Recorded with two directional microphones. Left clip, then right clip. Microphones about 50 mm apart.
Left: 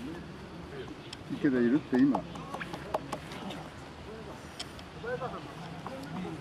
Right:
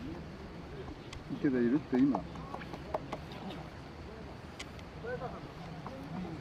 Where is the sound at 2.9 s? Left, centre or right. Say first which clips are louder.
Left 4 dB; centre.